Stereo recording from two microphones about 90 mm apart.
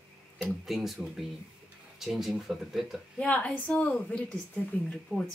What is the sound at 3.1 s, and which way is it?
Speech, 15° left (ahead or behind).